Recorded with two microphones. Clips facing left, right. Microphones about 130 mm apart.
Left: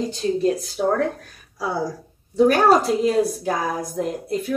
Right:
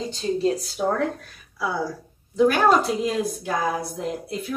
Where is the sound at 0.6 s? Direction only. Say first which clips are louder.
Left 3 dB; 40° left (ahead or behind).